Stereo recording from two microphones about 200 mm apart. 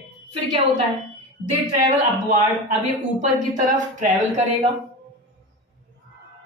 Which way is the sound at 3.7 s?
40° right (ahead or behind).